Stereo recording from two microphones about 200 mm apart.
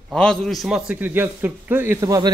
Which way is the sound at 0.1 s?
5° left (ahead or behind).